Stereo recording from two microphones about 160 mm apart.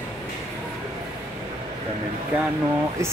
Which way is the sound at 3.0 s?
20° right (ahead or behind).